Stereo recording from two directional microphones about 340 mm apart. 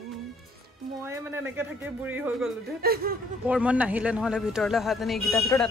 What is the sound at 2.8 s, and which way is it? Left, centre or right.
Speech, right.